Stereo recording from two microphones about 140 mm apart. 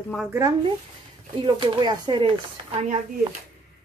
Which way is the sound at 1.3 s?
40° right (ahead or behind).